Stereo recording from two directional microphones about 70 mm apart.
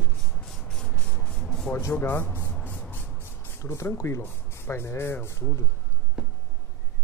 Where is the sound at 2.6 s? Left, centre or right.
Left.